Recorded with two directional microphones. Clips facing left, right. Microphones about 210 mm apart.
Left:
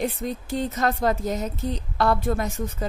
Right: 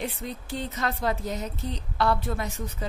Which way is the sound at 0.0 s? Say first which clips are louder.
Left 6 dB; 45° left (ahead or behind).